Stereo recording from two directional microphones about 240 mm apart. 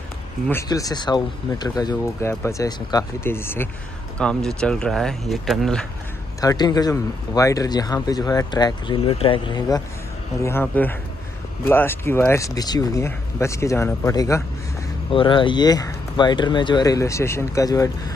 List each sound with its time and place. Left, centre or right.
0.5 s speech: centre
6.4 s speech: centre